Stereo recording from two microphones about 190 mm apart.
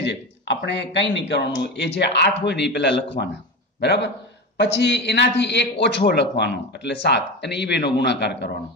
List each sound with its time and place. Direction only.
0.0 s a man's voice: 65° left (ahead or behind)